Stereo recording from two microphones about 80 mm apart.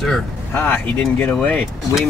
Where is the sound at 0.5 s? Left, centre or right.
Left.